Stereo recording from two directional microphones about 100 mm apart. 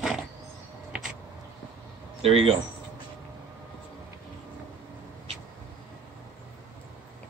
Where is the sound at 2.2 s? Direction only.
75° right (ahead or behind).